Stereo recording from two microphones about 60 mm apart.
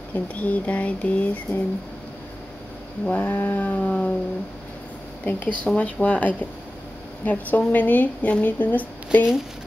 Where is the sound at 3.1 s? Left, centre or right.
Left.